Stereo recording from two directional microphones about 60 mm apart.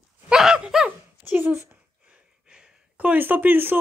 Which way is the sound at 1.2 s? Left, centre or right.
Right.